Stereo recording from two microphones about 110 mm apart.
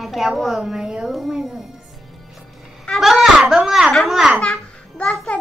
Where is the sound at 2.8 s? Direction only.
Centre (ahead or behind).